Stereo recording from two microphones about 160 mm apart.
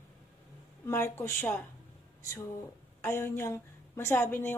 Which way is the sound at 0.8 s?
15° left (ahead or behind).